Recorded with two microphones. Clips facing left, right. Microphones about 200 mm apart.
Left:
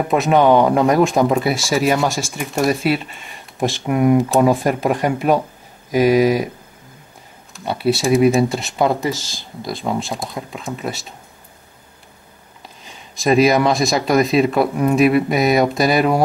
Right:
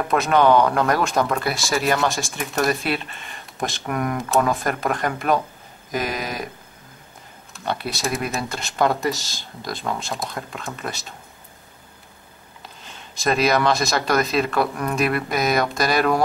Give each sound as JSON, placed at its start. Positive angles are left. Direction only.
{"t": 0.1, "sound": "speech", "side_deg": 0}
{"t": 7.5, "sound": "speech", "side_deg": 0}
{"t": 12.8, "sound": "speech", "side_deg": 0}